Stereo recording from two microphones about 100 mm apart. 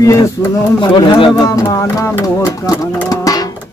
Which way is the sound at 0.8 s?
50° left (ahead or behind).